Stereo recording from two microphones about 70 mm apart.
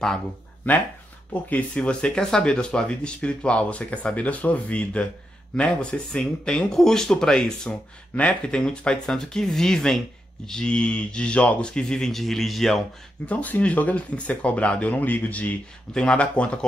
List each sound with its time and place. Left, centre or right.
1.5 s speech: centre
13.3 s speech: left